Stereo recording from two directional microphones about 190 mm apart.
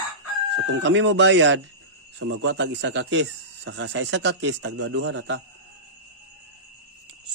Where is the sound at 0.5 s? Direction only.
75° right (ahead or behind).